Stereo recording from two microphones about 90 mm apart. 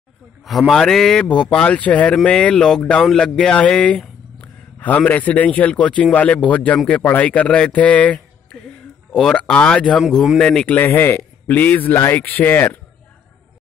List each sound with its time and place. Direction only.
0.5 s a man's voice: centre (ahead or behind)
10.0 s speech: centre (ahead or behind); by 11.9 s 20° left (ahead or behind)
11.9 s speech: 30° left (ahead or behind)
12.2 s speech: 20° left (ahead or behind)